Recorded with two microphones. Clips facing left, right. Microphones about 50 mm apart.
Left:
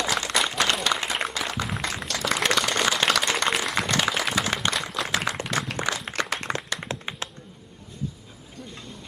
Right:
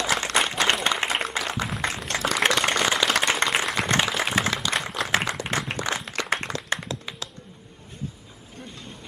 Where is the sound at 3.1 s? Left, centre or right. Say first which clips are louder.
Right 1 dB; right.